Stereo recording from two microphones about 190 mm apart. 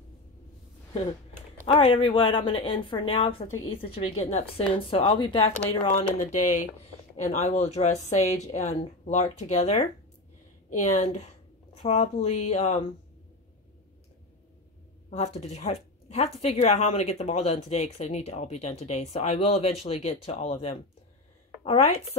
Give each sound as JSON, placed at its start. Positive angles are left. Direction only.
{"t": 1.7, "sound": "a woman's voice", "side_deg": 30}
{"t": 15.0, "sound": "speech", "side_deg": 35}